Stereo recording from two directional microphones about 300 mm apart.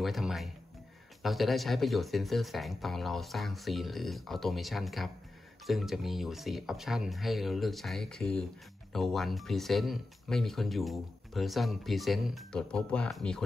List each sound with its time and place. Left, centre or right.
0.0 s speech: centre